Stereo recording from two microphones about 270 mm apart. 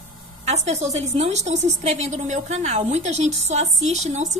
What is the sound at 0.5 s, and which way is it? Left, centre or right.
A woman's voice, right.